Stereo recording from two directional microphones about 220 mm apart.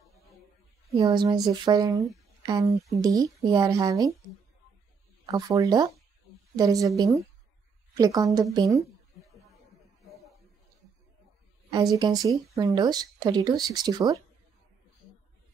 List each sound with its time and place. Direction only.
1.0 s speech: 20° right (ahead or behind)
5.2 s speech: 15° right (ahead or behind)
11.7 s speech: 15° right (ahead or behind)